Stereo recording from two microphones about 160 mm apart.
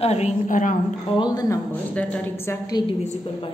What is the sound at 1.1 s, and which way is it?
Speech, 25° left (ahead or behind).